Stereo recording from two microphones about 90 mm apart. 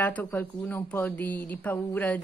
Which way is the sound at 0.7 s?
25° left (ahead or behind).